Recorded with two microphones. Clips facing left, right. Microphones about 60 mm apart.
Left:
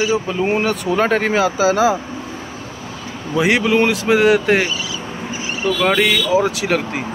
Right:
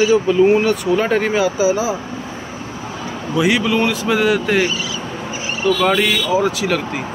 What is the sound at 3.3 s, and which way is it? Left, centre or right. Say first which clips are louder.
Speech: left 1 dB; left.